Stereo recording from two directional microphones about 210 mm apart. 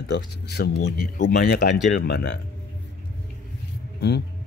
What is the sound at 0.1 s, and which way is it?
Speech, 55° left (ahead or behind).